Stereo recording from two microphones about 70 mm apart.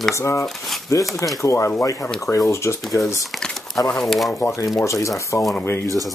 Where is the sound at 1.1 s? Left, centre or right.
Left.